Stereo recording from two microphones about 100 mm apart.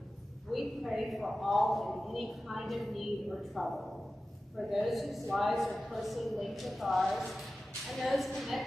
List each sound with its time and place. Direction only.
0.5 s a man's voice: centre (ahead or behind)